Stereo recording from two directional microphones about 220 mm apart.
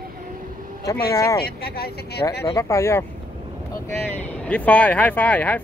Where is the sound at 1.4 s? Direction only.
45° left (ahead or behind).